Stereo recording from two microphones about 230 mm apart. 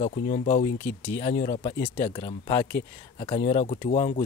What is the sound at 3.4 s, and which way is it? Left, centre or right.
Speech, left.